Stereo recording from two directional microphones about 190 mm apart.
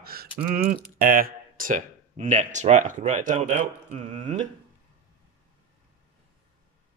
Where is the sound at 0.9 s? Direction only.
50° right (ahead or behind).